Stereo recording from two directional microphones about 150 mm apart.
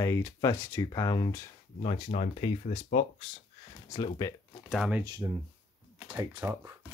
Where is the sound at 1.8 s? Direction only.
40° left (ahead or behind).